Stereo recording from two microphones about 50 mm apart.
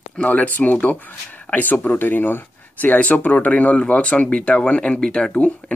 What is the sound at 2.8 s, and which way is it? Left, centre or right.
Speech, left.